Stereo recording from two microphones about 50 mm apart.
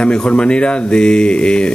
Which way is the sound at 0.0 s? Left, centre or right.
Centre.